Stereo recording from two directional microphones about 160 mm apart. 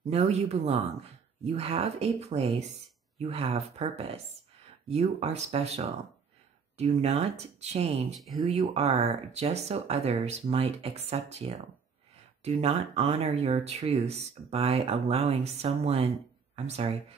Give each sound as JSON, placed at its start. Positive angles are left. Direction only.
{"t": 0.0, "sound": "speech", "side_deg": -45}